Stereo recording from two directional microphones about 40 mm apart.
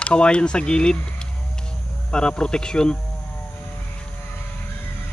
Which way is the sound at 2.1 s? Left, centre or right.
Left.